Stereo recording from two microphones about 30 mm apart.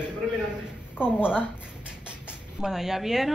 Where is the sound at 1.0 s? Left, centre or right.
Right.